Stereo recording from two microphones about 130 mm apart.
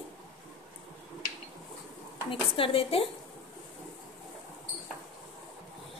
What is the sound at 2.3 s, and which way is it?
Speech, 45° left (ahead or behind).